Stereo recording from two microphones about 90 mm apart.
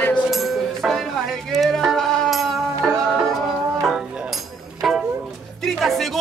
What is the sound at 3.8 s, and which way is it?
Music, 5° right (ahead or behind).